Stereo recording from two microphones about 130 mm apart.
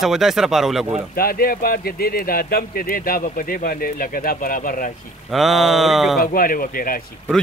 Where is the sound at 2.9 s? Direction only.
90° left.